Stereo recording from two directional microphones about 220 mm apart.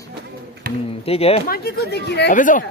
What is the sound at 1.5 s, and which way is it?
Speech, 45° left (ahead or behind).